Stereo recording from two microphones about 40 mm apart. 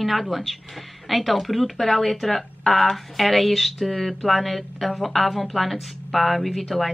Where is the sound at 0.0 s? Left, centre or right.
Centre.